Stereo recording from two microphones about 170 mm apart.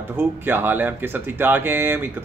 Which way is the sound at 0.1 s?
10° right (ahead or behind).